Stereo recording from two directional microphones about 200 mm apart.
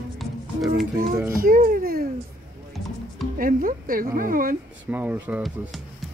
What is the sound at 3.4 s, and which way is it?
Speech, 45° right (ahead or behind).